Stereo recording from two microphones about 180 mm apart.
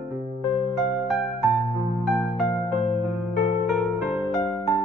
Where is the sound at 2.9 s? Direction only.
40° left (ahead or behind).